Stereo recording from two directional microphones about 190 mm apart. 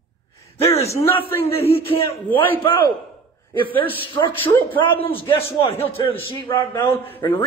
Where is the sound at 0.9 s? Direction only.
15° left (ahead or behind).